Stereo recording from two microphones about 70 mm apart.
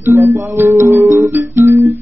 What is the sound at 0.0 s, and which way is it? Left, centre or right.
Music, right.